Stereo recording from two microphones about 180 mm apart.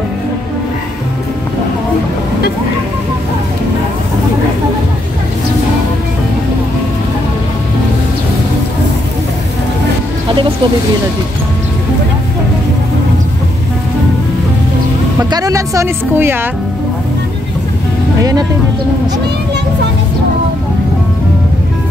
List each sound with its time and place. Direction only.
15.3 s speech: 20° right (ahead or behind)